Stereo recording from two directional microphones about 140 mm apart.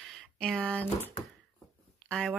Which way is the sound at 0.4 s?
5° left (ahead or behind).